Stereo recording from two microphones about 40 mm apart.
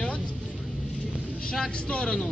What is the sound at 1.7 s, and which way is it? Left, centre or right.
Speech, left.